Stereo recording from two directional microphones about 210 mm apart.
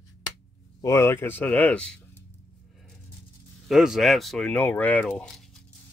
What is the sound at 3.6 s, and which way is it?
Speech, centre (ahead or behind).